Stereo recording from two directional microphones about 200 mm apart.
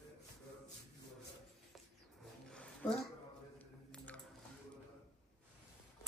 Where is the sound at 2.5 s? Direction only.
5° left (ahead or behind).